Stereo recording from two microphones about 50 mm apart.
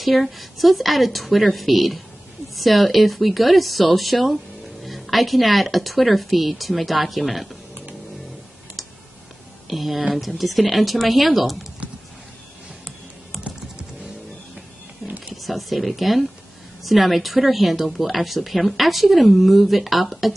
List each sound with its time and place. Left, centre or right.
0.0 s a woman's voice: centre
8.8 s clicking: centre
9.7 s a woman's voice: centre
13.4 s typing: centre
15.0 s a sound: right
15.4 s a woman's voice: centre